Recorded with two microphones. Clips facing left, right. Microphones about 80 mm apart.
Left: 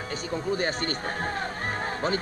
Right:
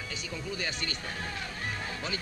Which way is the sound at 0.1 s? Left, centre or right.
Left.